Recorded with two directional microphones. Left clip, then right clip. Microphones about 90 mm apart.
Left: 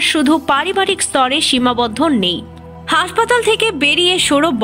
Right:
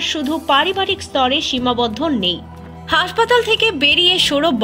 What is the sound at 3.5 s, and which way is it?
Speech, 30° left (ahead or behind).